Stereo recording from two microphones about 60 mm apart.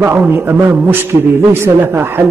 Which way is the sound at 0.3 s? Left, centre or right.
Right.